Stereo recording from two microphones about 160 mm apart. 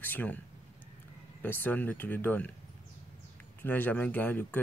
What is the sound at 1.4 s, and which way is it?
Speech, 10° left (ahead or behind).